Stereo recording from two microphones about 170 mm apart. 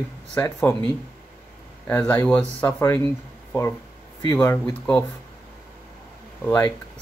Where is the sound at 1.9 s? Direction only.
15° left (ahead or behind).